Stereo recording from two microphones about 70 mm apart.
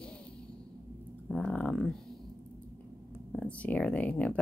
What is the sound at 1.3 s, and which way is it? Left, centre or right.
Speech, centre.